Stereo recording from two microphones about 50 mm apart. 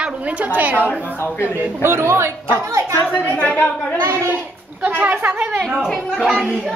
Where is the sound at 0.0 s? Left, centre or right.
Right.